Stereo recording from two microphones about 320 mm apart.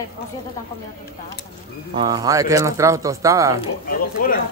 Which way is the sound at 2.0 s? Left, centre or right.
Centre.